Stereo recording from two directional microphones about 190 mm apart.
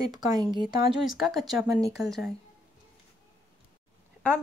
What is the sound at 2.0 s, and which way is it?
Speech, centre (ahead or behind).